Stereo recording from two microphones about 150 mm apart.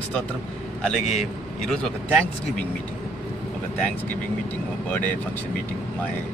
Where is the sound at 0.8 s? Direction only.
Centre (ahead or behind).